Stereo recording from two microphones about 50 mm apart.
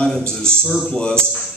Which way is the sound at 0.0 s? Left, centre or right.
Centre.